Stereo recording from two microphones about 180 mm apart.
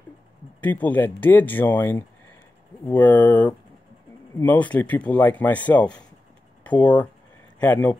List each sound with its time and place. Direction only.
0.6 s speech: 10° left (ahead or behind)